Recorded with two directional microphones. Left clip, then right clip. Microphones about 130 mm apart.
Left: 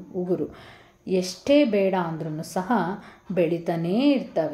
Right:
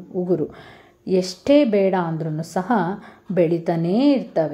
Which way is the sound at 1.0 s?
30° right (ahead or behind).